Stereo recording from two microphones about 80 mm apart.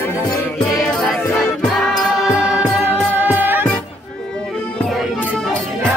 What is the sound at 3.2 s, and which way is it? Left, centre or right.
Music, right.